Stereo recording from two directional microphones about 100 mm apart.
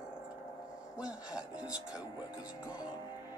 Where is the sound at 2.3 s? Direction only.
40° left (ahead or behind).